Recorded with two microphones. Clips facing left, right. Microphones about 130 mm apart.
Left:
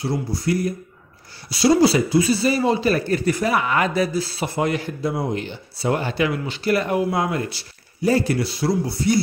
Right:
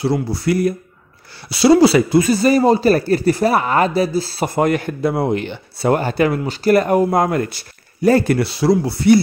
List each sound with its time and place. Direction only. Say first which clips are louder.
0.0 s speech: right 5 dB; 75° right (ahead or behind); by 4.5 s 30° right (ahead or behind)
4.6 s speech: right 6 dB; 55° right (ahead or behind)